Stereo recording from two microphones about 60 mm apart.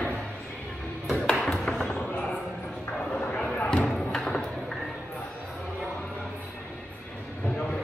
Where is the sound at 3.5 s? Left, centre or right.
Centre.